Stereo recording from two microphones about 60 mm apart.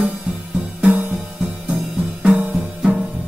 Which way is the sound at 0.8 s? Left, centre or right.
Right.